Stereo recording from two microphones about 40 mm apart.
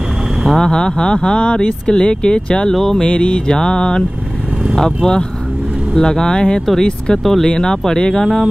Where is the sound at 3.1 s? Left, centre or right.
Left.